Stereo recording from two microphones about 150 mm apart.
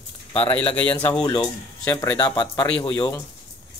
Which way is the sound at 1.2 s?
30° left (ahead or behind).